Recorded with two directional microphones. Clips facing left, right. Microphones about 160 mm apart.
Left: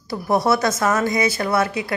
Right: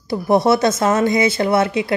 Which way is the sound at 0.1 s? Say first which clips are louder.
Right 4 dB; 25° right (ahead or behind).